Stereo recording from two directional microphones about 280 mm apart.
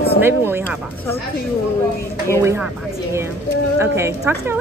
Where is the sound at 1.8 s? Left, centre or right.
Centre.